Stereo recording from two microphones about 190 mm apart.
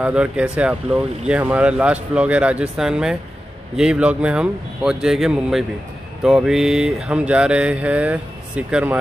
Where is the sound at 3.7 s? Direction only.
5° right (ahead or behind).